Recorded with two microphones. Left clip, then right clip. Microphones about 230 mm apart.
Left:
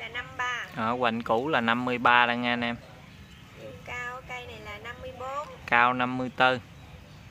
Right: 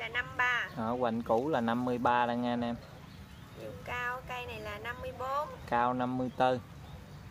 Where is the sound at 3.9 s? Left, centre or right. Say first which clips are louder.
Even; centre.